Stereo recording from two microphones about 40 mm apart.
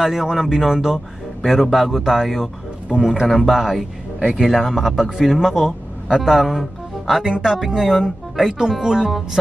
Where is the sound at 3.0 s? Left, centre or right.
Centre.